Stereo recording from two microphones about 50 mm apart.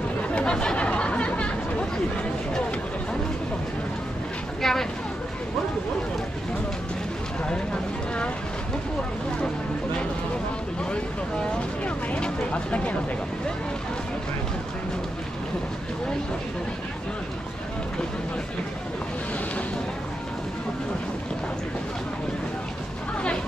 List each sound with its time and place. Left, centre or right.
0.2 s chatter: left
4.6 s vehicle: centre
10.9 s a sound: left